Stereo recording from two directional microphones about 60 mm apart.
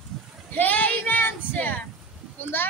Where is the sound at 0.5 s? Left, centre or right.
Left.